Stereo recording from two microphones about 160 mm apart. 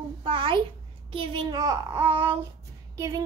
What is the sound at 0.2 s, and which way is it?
Speech, 30° right (ahead or behind).